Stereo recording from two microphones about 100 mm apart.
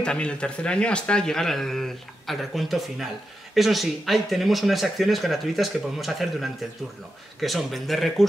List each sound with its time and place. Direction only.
0.0 s speech: 10° left (ahead or behind)